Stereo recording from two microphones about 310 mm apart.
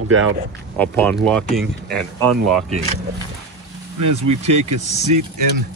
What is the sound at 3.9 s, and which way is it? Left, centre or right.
Speech, right.